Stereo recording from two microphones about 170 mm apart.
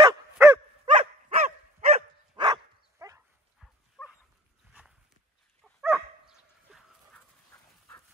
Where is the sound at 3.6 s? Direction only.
Centre (ahead or behind).